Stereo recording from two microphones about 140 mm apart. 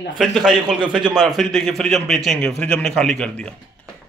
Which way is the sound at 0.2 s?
Centre (ahead or behind).